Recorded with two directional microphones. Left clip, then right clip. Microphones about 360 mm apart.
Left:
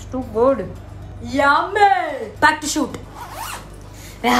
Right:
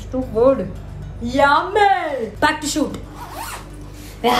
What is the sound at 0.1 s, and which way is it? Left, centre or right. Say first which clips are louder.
A woman's voice: right 2 dB; centre.